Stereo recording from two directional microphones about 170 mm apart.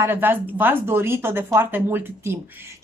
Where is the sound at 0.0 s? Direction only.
10° right (ahead or behind).